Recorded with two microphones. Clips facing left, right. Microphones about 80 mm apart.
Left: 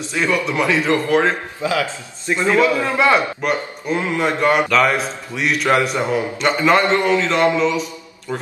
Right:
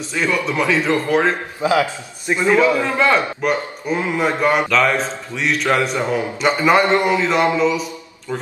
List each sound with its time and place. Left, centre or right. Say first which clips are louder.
0.1 s a man's voice: left 1 dB; centre
1.6 s a man's voice: right 6 dB; right
2.6 s a man's voice: even; centre
3.4 s a man's voice: right 1 dB; centre
6.4 s a man's voice: right 1 dB; centre